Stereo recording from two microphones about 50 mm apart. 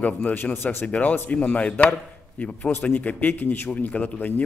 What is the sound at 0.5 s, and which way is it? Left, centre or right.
Speech, left.